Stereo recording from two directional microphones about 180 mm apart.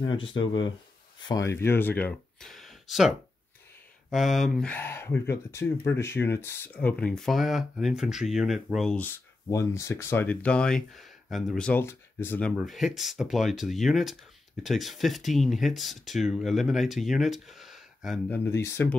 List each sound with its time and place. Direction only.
0.0 s speech: 25° left (ahead or behind); by 9.1 s 5° left (ahead or behind)
9.5 s speech: 15° left (ahead or behind); by 18.2 s centre (ahead or behind)
18.3 s speech: 15° left (ahead or behind)